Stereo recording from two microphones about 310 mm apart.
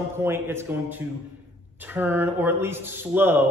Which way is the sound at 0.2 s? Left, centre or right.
Centre.